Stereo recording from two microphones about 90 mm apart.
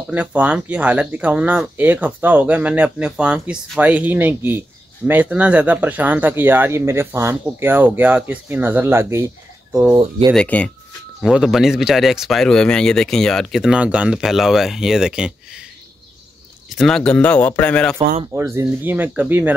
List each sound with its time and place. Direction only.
0.1 s speech: 15° right (ahead or behind)
10.3 s a man's voice: 15° left (ahead or behind)
11.2 s speech: 5° right (ahead or behind)
16.6 s a man's voice: 5° left (ahead or behind)
18.3 s speech: 30° right (ahead or behind)